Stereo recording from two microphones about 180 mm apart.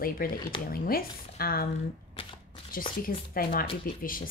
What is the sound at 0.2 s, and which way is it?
Speech, 50° left (ahead or behind).